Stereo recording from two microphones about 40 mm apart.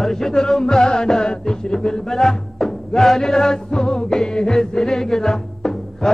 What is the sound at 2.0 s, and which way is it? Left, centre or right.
Music, centre.